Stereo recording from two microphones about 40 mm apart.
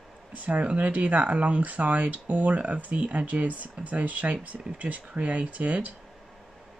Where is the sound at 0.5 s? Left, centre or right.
Right.